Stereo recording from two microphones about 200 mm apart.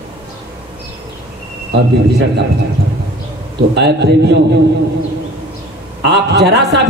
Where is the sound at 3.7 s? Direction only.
60° right (ahead or behind).